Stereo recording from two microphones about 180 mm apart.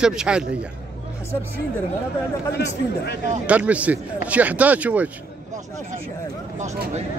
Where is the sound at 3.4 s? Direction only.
5° right (ahead or behind).